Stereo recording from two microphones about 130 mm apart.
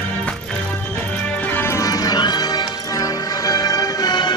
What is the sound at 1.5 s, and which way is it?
Music, 20° left (ahead or behind).